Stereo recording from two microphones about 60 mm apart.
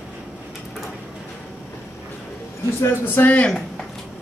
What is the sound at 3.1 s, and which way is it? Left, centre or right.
Speech, left.